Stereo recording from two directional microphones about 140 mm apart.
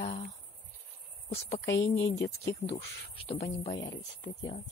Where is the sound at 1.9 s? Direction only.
50° left (ahead or behind).